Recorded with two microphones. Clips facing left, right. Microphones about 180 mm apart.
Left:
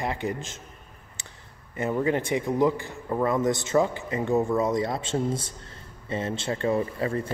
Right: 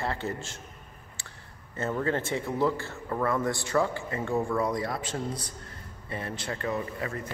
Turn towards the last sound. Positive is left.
turn(degrees=30)  # may be behind; listen again after turning